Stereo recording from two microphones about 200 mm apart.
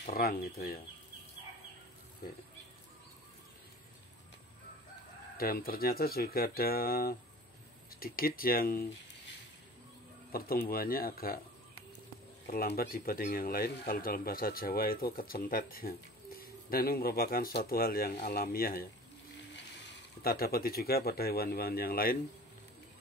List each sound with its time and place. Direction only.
0.1 s speech: 45° left (ahead or behind)
5.4 s speech: 50° left (ahead or behind)
10.3 s speech: 45° left (ahead or behind)
12.4 s speech: 50° left (ahead or behind)
20.2 s speech: 50° left (ahead or behind)